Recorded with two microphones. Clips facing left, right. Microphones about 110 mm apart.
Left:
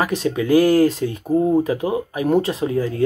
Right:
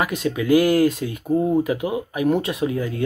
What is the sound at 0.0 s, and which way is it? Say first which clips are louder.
Speech: left 2 dB; 30° left (ahead or behind).